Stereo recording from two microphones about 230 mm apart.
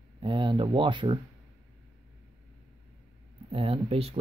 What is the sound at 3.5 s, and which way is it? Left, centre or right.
Speech, right.